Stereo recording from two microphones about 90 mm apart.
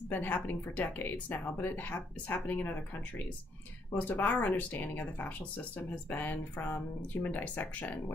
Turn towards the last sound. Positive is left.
turn(degrees=15)  # may be behind; listen again after turning